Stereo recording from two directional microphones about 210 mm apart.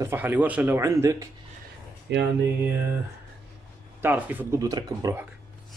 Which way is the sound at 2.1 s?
55° right (ahead or behind).